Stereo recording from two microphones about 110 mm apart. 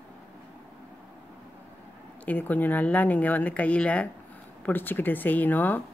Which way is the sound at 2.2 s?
15° left (ahead or behind).